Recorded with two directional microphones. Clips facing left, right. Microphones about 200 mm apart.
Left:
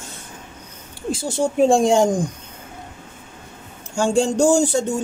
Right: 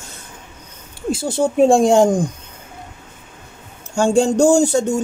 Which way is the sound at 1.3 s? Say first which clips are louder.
Right 3 dB; 55° right (ahead or behind).